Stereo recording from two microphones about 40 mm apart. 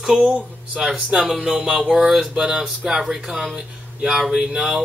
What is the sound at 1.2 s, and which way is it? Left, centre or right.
Speech, centre.